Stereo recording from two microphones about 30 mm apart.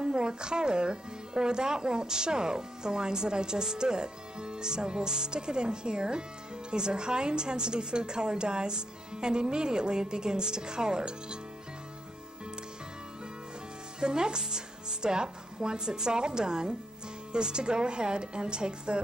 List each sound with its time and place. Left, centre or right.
0.0 s speech: right
13.9 s speech: right